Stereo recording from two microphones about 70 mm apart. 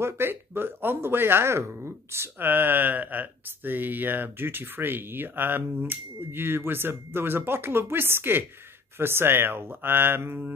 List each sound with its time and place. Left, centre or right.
0.0 s speech: right